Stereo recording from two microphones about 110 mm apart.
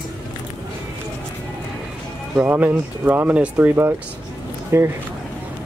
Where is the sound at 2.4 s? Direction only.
20° right (ahead or behind).